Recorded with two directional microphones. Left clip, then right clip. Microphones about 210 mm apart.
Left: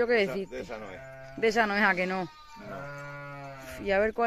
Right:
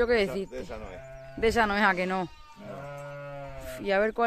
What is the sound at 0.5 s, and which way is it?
Speech, 40° left (ahead or behind).